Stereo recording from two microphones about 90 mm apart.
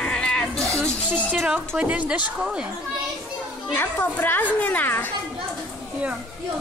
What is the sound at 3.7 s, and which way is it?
A child's voice, 25° left (ahead or behind).